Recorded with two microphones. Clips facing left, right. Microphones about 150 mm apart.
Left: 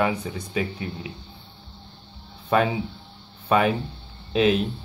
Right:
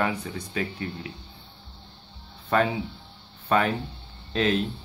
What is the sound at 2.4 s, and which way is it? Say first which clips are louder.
Speech: left 2 dB; 10° left (ahead or behind).